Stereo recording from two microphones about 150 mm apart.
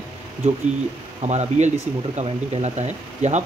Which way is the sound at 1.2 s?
45° right (ahead or behind).